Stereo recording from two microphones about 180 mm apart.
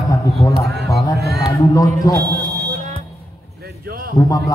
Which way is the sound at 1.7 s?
20° left (ahead or behind).